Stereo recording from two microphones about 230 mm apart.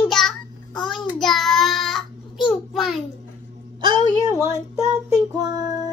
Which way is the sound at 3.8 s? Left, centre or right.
Centre.